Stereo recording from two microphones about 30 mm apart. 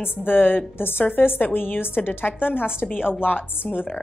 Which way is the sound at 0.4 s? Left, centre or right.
Left.